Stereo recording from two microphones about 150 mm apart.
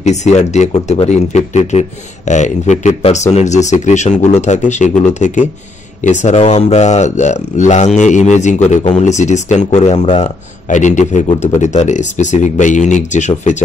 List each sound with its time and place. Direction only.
0.0 s speech: 50° left (ahead or behind)